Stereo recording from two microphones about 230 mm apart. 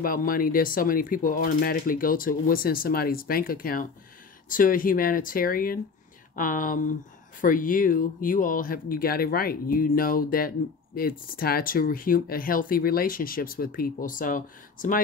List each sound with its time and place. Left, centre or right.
0.0 s speech: left